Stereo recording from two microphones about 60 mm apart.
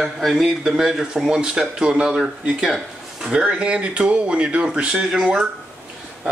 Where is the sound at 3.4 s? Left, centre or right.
Centre.